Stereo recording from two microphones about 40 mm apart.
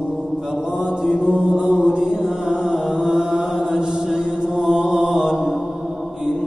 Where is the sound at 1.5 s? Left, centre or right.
Centre.